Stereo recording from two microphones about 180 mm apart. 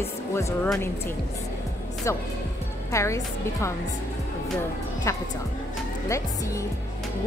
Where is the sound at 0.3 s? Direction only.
15° left (ahead or behind).